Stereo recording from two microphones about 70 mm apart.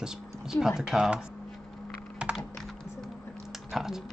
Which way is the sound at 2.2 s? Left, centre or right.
Centre.